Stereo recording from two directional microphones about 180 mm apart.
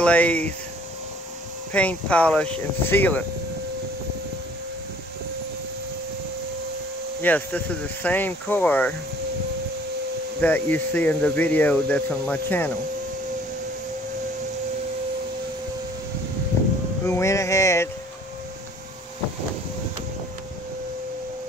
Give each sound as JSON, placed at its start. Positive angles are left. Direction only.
{"t": 0.0, "sound": "speech", "side_deg": 10}
{"t": 1.7, "sound": "speech", "side_deg": 10}
{"t": 7.2, "sound": "speech", "side_deg": 10}
{"t": 10.4, "sound": "speech", "side_deg": 10}
{"t": 17.0, "sound": "speech", "side_deg": 15}